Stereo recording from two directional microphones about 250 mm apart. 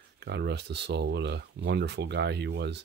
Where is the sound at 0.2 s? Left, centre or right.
Right.